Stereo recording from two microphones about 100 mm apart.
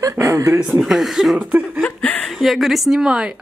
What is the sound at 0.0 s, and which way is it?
Speech, 30° right (ahead or behind).